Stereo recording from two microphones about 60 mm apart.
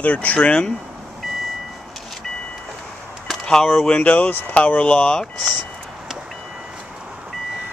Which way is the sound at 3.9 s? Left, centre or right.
Left.